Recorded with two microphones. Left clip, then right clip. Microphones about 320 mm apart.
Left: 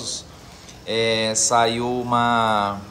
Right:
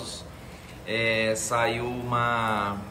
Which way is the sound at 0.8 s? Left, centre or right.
Centre.